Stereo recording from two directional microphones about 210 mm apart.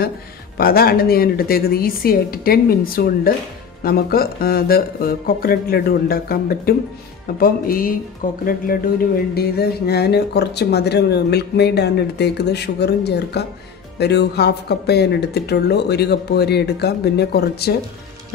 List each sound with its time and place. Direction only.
0.6 s speech: 45° left (ahead or behind)